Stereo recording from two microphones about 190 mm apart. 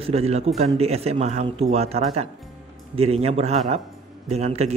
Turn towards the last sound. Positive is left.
turn(degrees=-35)  # may be behind; listen again after turning